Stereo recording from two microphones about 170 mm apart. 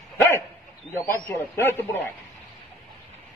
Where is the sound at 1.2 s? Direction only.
10° left (ahead or behind).